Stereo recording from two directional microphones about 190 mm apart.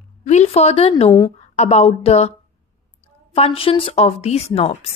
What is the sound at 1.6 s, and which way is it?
Speech, 35° left (ahead or behind).